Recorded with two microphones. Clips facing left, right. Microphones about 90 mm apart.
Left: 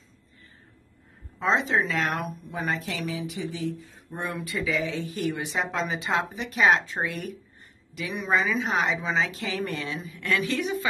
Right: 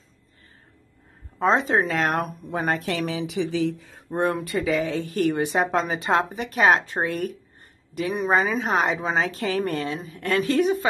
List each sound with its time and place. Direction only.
1.4 s speech: 45° right (ahead or behind); by 4.0 s 90° right
4.1 s speech: 50° right (ahead or behind)